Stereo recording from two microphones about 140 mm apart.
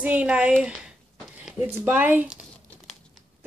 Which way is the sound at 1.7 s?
15° right (ahead or behind).